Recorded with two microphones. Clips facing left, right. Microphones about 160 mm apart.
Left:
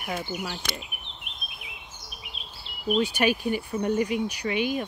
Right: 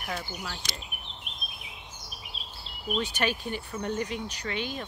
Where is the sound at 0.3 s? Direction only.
10° left (ahead or behind).